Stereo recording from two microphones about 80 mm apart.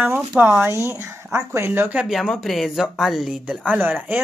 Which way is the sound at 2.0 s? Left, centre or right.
Centre.